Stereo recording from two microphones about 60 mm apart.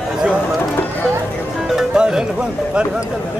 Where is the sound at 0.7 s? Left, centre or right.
Left.